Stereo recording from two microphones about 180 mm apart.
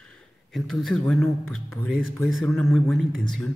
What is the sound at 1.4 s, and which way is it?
Speech, 90° right.